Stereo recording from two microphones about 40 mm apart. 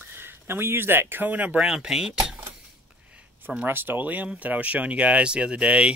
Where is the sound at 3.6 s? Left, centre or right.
Right.